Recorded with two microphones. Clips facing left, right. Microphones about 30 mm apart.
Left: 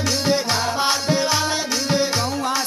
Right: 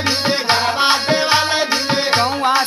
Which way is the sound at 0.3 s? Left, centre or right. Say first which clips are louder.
Right 3 dB; right.